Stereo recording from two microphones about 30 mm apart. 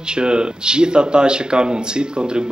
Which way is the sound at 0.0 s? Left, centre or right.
Right.